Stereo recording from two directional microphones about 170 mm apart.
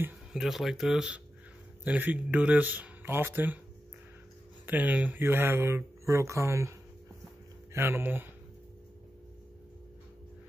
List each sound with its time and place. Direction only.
0.0 s speech: 5° right (ahead or behind)
4.6 s speech: 10° right (ahead or behind)